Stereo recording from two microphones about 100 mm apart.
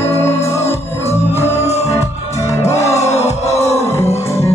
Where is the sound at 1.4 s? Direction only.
25° left (ahead or behind).